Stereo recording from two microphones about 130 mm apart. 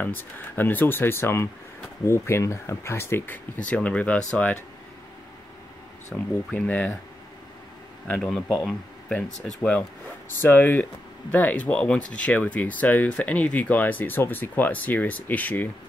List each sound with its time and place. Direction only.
0.0 s speech: 15° left (ahead or behind)
6.1 s speech: 10° left (ahead or behind)
8.1 s speech: 5° left (ahead or behind)